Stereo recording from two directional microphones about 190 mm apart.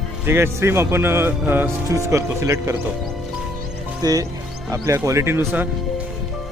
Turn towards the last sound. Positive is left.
turn(degrees=-10)  # may be behind; listen again after turning